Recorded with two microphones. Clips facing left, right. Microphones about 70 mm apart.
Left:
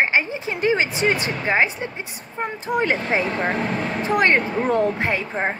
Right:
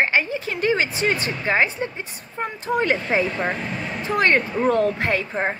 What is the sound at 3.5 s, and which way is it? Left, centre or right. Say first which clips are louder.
Speech: left 5 dB; left.